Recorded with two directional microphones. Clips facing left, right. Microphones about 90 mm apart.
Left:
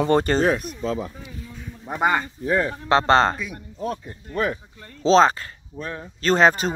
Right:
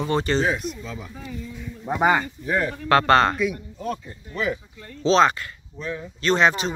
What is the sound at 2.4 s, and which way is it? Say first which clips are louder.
Speech: left 2 dB; 30° left (ahead or behind).